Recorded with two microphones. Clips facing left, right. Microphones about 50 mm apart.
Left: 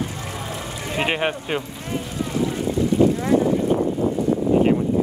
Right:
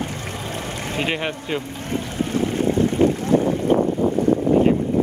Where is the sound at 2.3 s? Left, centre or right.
Right.